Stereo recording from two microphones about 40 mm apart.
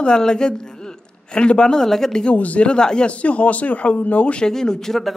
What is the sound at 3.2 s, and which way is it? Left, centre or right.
Speech, left.